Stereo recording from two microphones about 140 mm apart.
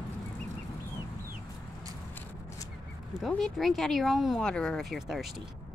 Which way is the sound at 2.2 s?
20° left (ahead or behind).